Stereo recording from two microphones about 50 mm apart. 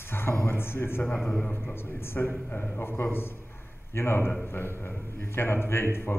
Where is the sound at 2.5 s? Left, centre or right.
Left.